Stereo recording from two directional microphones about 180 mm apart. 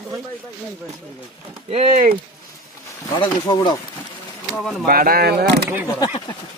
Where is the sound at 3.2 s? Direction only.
20° left (ahead or behind).